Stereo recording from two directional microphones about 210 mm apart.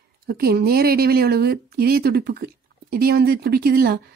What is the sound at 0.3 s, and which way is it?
A woman's voice, 45° right (ahead or behind).